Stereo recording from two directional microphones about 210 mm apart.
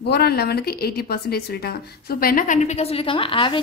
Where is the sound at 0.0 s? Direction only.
50° left (ahead or behind).